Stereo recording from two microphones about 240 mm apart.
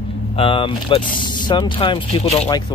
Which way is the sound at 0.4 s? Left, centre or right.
Left.